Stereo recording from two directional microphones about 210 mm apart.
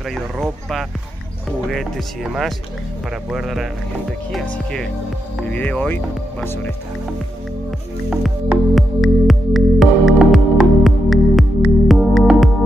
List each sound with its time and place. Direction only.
0.1 s speech: centre (ahead or behind)
8.1 s music: centre (ahead or behind)